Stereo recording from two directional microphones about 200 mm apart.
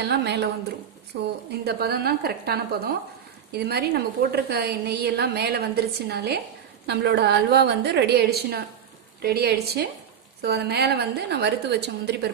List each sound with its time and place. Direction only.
0.0 s a woman's voice: 55° right (ahead or behind)